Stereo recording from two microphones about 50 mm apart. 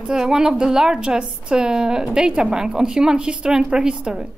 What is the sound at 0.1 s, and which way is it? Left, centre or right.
A woman's voice, centre.